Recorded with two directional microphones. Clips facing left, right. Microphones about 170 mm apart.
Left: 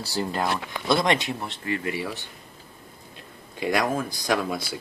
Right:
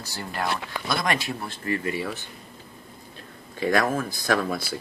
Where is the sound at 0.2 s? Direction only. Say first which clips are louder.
Left 3 dB; 25° left (ahead or behind).